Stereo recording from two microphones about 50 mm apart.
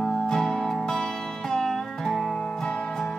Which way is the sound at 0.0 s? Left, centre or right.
Centre.